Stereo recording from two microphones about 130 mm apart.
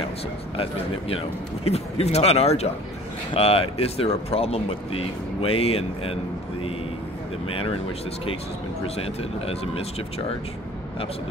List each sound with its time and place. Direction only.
0.6 s speech: 50° left (ahead or behind)
7.4 s speech: 45° left (ahead or behind)
8.8 s speech: 50° left (ahead or behind)